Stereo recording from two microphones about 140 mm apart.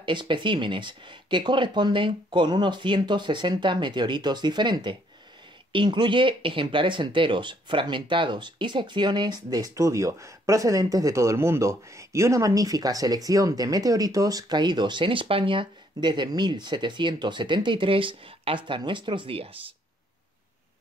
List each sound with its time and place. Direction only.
0.0 s speech: 35° right (ahead or behind)